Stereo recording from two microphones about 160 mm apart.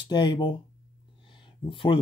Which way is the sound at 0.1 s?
30° left (ahead or behind).